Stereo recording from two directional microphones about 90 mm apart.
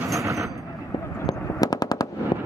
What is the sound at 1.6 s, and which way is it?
Machine gun, 45° left (ahead or behind).